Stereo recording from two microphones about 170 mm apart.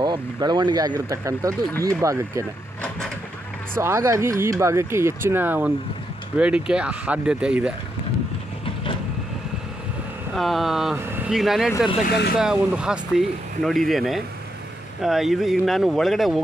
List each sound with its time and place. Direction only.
0.0 s speech: 25° right (ahead or behind)
3.7 s speech: 15° right (ahead or behind)
10.3 s speech: centre (ahead or behind)